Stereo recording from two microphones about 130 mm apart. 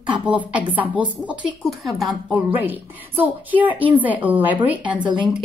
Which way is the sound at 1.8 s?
Centre (ahead or behind).